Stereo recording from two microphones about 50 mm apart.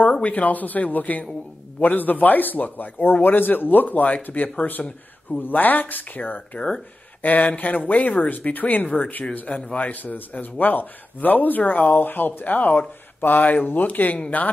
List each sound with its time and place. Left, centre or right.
0.1 s speech: left
8.8 s speech: left
9.3 s speech: left